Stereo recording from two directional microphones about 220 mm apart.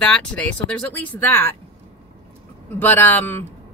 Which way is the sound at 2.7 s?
10° left (ahead or behind).